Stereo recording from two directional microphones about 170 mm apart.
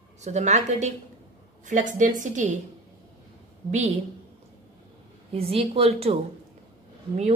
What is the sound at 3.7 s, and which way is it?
Speech, 40° right (ahead or behind).